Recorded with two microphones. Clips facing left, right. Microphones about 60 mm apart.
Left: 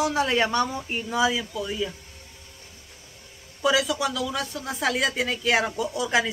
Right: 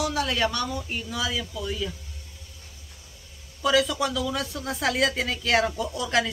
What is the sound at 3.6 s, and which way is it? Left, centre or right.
A woman's voice, centre.